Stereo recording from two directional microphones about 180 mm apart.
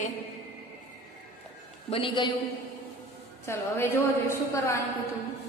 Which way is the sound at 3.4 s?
15° left (ahead or behind).